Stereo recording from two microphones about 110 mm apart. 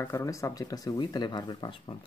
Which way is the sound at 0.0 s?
30° left (ahead or behind).